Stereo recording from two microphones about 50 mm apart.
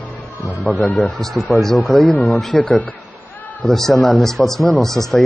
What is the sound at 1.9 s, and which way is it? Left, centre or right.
Speech, left.